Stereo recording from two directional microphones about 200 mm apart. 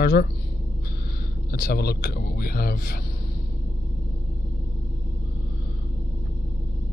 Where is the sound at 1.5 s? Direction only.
50° left (ahead or behind).